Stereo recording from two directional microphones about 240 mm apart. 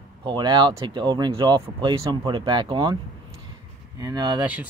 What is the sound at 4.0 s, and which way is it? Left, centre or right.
Speech, centre.